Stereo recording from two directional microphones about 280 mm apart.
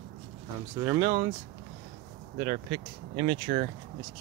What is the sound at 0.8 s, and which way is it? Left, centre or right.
Speech, centre.